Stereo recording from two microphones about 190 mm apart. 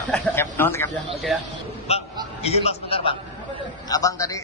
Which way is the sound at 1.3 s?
Centre (ahead or behind).